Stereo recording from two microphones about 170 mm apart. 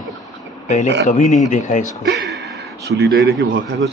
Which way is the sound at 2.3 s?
80° right.